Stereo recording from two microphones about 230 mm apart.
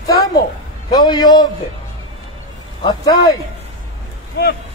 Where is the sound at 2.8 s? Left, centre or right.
Centre.